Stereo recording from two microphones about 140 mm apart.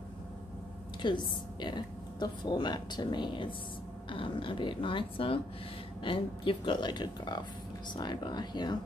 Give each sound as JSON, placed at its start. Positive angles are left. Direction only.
{"t": 1.0, "sound": "a woman's voice", "side_deg": 35}